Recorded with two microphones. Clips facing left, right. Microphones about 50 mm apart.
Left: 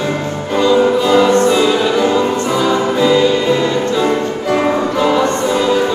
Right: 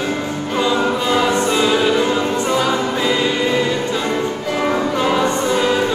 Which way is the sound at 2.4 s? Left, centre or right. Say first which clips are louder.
Left 3 dB; centre.